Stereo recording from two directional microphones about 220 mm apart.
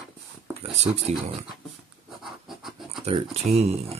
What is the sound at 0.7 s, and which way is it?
Speech, 30° right (ahead or behind).